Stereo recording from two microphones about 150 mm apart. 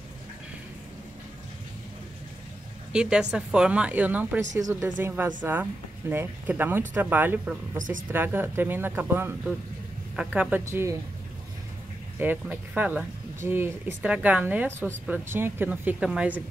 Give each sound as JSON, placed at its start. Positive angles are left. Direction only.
{"t": 2.9, "sound": "speech", "side_deg": -5}
{"t": 7.7, "sound": "speech", "side_deg": -60}
{"t": 8.1, "sound": "speech", "side_deg": -15}
{"t": 12.2, "sound": "speech", "side_deg": -10}